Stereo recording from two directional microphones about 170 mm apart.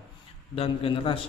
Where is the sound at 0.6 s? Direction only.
30° left (ahead or behind).